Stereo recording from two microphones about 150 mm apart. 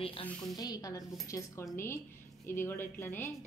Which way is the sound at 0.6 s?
25° left (ahead or behind).